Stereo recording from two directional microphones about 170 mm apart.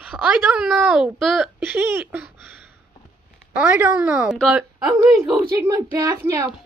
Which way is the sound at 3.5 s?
10° right (ahead or behind).